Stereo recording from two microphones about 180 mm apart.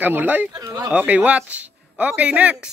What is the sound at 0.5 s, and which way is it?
Speech, 20° right (ahead or behind).